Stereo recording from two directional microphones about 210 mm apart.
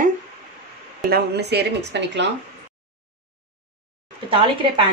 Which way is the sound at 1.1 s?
50° right (ahead or behind).